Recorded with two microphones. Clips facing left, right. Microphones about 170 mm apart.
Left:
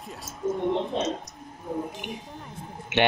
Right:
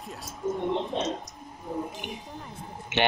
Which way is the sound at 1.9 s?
Centre (ahead or behind).